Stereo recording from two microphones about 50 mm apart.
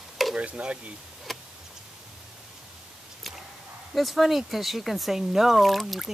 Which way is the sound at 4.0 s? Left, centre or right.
Centre.